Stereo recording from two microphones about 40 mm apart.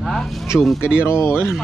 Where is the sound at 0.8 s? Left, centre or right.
Right.